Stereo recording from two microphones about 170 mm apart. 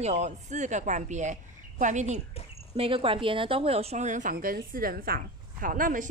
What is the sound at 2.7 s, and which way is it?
A woman's voice, 30° right (ahead or behind).